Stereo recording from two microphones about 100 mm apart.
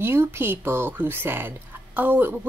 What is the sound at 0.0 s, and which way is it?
A woman's voice, 25° right (ahead or behind).